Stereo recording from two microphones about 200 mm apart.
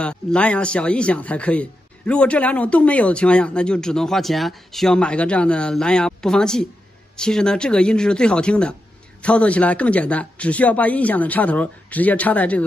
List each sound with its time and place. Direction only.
0.0 s speech: 5° left (ahead or behind)